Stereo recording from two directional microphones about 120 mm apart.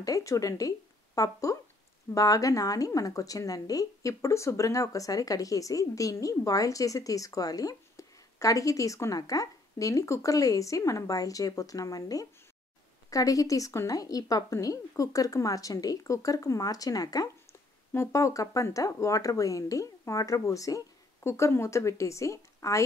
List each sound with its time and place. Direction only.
0.0 s a woman's voice: 25° left (ahead or behind)